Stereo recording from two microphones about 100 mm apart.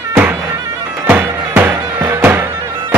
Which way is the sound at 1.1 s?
15° right (ahead or behind).